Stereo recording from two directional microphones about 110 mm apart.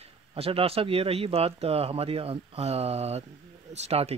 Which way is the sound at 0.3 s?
60° right (ahead or behind).